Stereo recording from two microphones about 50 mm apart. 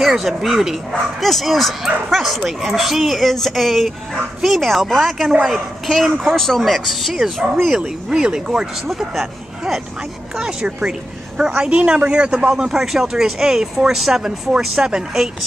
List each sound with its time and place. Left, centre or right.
0.0 s speech: centre
8.2 s a woman's voice: centre
8.8 s speech: centre
10.4 s a woman's voice: centre